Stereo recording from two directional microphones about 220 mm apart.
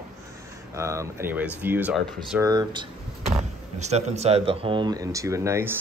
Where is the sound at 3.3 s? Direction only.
30° right (ahead or behind); by 5.7 s 10° right (ahead or behind).